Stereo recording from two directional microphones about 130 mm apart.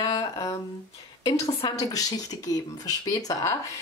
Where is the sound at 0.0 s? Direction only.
30° left (ahead or behind).